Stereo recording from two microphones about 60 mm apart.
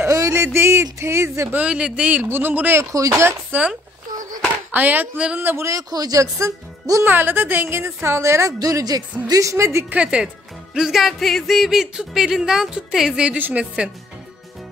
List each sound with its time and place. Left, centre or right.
0.0 s a sound: right
1.5 s speech: centre
2.2 s speech: right
2.8 s speech: right
3.5 s speech: right
5.6 s speech: right
7.1 s a woman's voice: right
9.3 s a woman's voice: right
9.8 s speech: right
13.4 s speech: right